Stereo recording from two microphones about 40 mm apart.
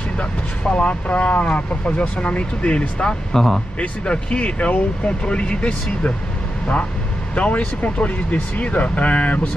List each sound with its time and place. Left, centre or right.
0.2 s speech: left
3.3 s speech: centre
4.0 s speech: left
7.3 s speech: left